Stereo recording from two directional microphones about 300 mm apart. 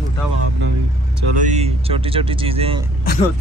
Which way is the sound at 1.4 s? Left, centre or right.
Right.